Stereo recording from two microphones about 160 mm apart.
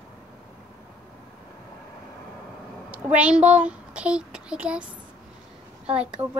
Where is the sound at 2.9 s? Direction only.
10° right (ahead or behind).